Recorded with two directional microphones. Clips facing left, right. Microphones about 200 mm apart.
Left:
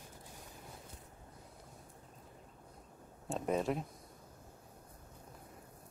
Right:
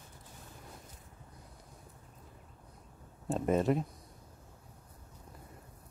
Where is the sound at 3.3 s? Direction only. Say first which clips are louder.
Right 5 dB; centre (ahead or behind).